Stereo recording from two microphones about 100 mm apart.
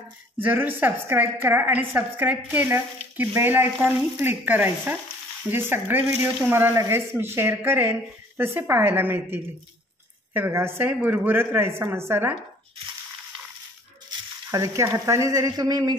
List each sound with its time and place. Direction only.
0.4 s a woman's voice: 20° right (ahead or behind)
14.5 s speech: 30° right (ahead or behind)